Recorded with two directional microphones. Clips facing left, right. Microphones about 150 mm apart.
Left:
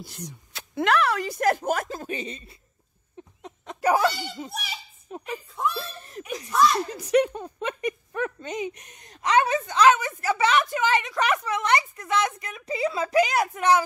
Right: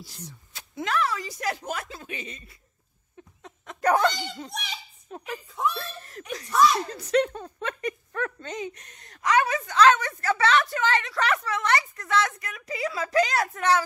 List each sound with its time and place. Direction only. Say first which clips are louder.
0.5 s speech: left 7 dB; 75° left (ahead or behind); by 2.5 s 30° left (ahead or behind)
3.8 s a sound: even; 5° left (ahead or behind)
5.8 s snicker: left 2 dB; 20° left (ahead or behind)
6.2 s a child's voice: left 2 dB; 15° left (ahead or behind)
6.5 s speech: even; centre (ahead or behind)
6.9 s speech: left 2 dB; 10° left (ahead or behind)
9.8 s a woman's voice: even; 10° left (ahead or behind)
13.1 s a woman's voice: left 1 dB; 15° left (ahead or behind)